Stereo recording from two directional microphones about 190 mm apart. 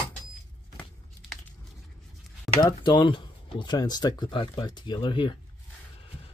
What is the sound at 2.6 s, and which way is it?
Speech, 20° left (ahead or behind).